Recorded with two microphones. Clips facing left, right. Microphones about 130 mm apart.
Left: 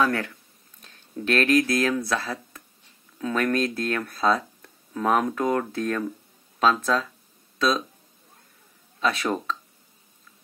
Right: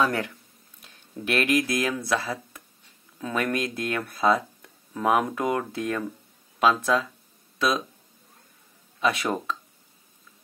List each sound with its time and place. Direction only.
0.0 s speech: 20° right (ahead or behind)
9.0 s speech: 15° right (ahead or behind)